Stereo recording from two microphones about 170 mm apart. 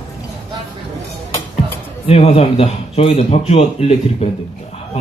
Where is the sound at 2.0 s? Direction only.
35° left (ahead or behind).